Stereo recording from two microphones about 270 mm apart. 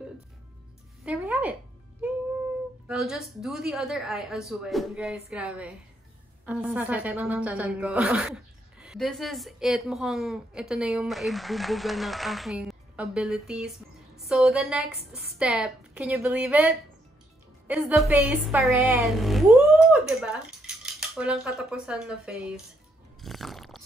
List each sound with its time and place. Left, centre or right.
1.0 s music: centre
2.9 s a woman's voice: centre
23.2 s chewing: centre